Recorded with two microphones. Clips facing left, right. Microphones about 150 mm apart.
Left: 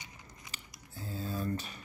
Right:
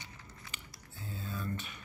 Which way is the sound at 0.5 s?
35° left (ahead or behind).